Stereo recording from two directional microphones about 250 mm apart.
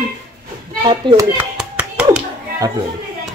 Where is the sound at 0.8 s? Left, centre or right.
Centre.